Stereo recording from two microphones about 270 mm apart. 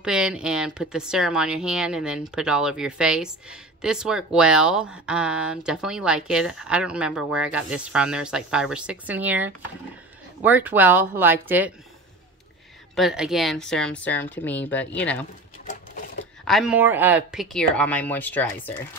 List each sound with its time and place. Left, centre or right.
0.0 s speech: centre
12.9 s speech: centre
15.6 s sewing machine: left
16.4 s speech: centre